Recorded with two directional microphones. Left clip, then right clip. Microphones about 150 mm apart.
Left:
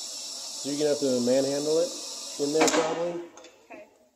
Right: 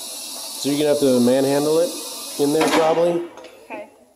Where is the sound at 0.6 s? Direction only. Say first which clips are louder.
Right 8 dB; 35° right (ahead or behind).